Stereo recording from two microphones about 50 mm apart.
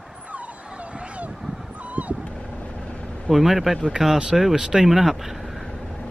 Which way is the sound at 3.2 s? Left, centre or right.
Centre.